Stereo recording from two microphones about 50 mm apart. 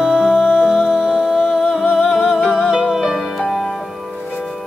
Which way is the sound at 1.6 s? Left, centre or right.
Centre.